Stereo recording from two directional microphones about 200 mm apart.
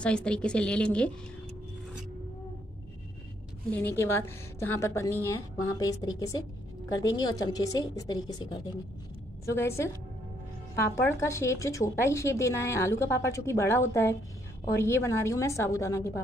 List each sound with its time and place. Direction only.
0.0 s a woman's voice: 5° left (ahead or behind)
3.7 s a woman's voice: 10° left (ahead or behind)